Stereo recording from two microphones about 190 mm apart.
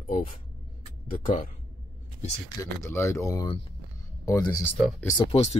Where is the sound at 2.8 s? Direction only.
15° left (ahead or behind).